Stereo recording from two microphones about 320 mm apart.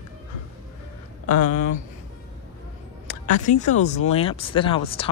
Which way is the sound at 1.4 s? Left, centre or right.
Left.